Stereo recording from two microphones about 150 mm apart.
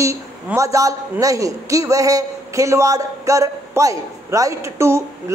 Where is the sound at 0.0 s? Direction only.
20° right (ahead or behind).